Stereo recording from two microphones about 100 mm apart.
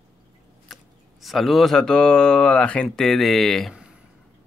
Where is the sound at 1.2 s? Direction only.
Centre (ahead or behind).